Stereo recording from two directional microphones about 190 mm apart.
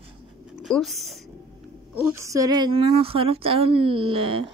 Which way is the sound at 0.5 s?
Centre (ahead or behind).